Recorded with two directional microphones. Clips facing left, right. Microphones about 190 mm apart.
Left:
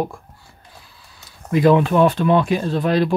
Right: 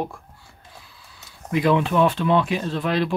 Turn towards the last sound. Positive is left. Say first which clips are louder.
# left 5 dB
turn(degrees=40)  # may be behind; listen again after turning